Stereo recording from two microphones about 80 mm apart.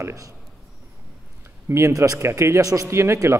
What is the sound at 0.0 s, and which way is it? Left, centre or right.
Speech, right.